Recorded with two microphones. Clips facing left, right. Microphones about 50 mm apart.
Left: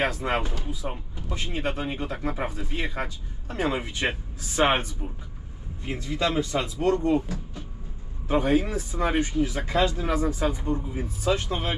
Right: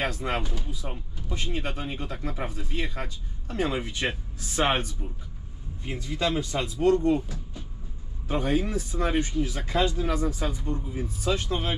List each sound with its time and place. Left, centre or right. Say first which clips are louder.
0.0 s speech: left 3 dB; left
1.3 s speech: left 2 dB; left
5.9 s speech: left 1 dB; left